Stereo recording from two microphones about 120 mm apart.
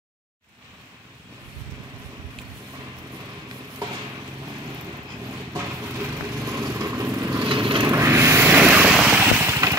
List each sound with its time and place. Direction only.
5.5 s vehicle: 25° right (ahead or behind); by 7.8 s 45° right (ahead or behind)
7.8 s vehicle: 20° right (ahead or behind)